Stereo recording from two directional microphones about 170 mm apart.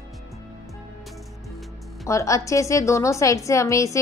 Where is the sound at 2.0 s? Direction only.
20° left (ahead or behind).